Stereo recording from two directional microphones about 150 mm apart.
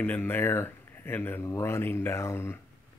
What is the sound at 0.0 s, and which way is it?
Speech, 10° left (ahead or behind).